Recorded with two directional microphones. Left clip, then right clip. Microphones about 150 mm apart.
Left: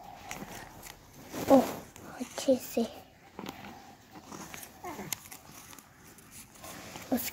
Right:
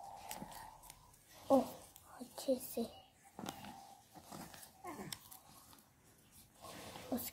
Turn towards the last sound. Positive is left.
turn(degrees=20)  # may be behind; listen again after turning